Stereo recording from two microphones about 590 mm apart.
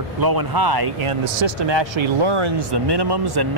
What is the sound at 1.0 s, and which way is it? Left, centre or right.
Speech, right.